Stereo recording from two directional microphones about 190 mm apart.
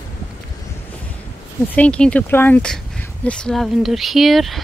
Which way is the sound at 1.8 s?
5° left (ahead or behind).